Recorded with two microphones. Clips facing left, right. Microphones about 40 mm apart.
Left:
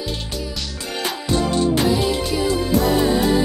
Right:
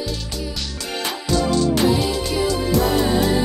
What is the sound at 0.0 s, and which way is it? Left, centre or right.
Music, left.